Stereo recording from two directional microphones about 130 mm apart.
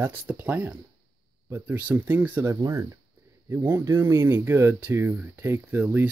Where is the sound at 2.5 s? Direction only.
25° right (ahead or behind).